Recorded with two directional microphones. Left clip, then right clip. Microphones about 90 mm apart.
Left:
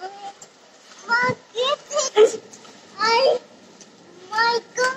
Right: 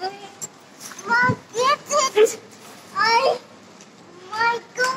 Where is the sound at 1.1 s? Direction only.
20° left (ahead or behind).